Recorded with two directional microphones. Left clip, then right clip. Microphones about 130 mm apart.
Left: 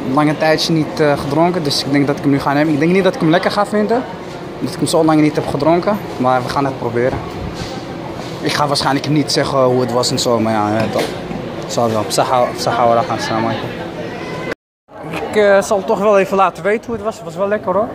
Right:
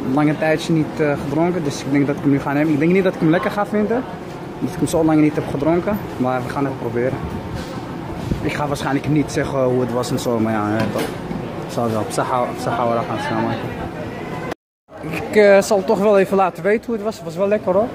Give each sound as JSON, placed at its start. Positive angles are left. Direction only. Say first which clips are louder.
{"t": 0.1, "sound": "speech", "louder": "left 4 dB", "side_deg": -5}
{"t": 8.5, "sound": "speech", "louder": "left 7 dB", "side_deg": 5}
{"t": 15.3, "sound": "speech", "louder": "even", "side_deg": -55}
{"t": 15.9, "sound": "speech", "louder": "left 4 dB", "side_deg": -35}
{"t": 17.7, "sound": "speech", "louder": "left 1 dB", "side_deg": -45}